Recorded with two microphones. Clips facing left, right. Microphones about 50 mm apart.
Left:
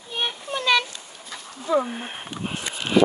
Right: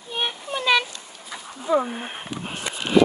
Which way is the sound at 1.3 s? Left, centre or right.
Centre.